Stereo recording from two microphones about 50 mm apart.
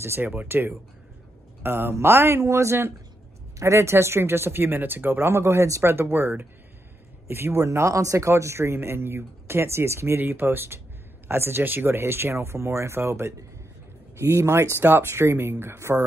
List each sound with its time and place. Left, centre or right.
0.0 s speech: right
0.3 s speech: right
7.6 s speech: right
10.2 s speech: right
14.8 s speech: right